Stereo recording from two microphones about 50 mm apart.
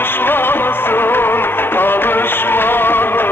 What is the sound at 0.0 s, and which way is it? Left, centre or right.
Music, left.